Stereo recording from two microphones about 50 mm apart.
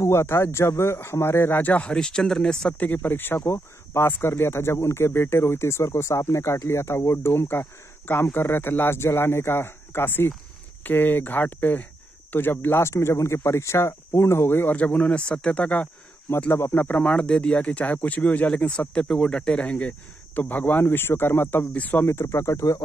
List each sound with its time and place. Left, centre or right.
0.0 s speech: left; by 2.7 s centre
2.8 s speech: left
3.4 s speech: left
7.3 s speech: left
12.8 s speech: left
14.6 s speech: left
16.5 s speech: left
17.0 s speech: left
19.0 s speech: centre; by 21.6 s left
21.7 s speech: left
22.0 s speech: left